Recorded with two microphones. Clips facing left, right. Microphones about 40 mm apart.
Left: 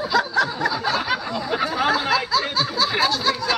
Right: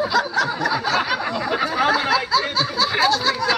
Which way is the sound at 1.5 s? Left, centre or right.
Centre.